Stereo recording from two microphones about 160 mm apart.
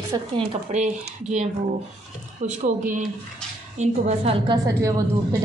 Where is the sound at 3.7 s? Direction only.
45° right (ahead or behind).